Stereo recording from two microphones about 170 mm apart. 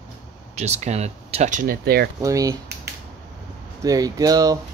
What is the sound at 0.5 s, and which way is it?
Speech, 40° right (ahead or behind).